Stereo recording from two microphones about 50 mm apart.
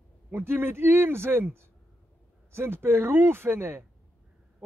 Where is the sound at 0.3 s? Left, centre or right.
Right.